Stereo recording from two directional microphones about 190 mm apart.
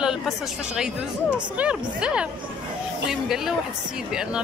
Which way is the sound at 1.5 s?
5° right (ahead or behind).